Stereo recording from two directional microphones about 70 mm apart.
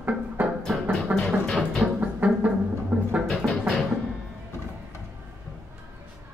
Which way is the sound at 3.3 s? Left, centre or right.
Centre.